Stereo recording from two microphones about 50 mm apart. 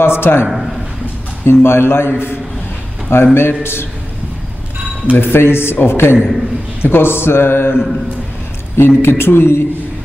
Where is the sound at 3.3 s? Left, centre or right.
Left.